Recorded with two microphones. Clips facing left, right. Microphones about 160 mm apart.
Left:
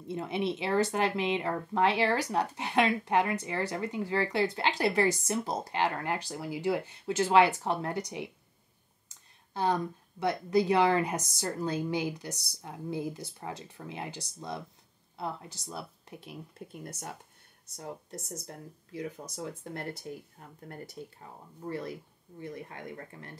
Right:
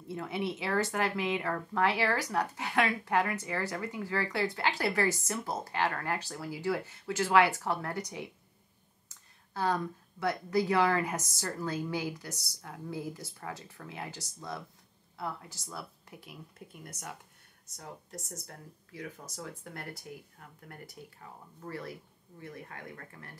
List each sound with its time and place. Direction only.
0.1 s speech: 25° left (ahead or behind)
9.5 s speech: 20° left (ahead or behind)